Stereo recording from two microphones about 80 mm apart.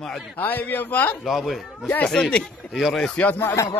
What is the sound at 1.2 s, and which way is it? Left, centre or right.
Speech, centre.